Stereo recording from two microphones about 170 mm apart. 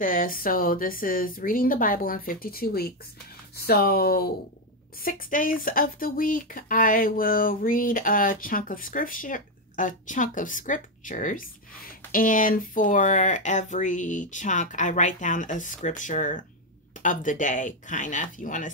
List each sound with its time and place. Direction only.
0.0 s speech: 55° left (ahead or behind)
5.0 s speech: 50° left (ahead or behind)